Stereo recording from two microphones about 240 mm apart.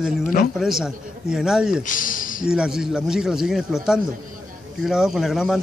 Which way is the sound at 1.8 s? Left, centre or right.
Left.